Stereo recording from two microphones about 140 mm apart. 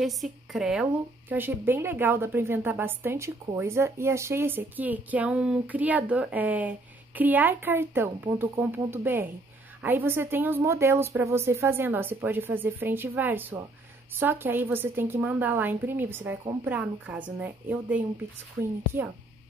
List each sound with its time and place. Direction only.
0.0 s a woman's voice: centre (ahead or behind)
1.3 s a woman's voice: 15° right (ahead or behind)